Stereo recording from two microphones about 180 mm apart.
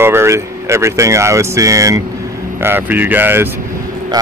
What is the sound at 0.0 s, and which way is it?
Speech, 15° right (ahead or behind).